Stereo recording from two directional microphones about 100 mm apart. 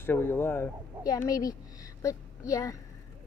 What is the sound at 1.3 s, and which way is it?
Speech, 35° left (ahead or behind).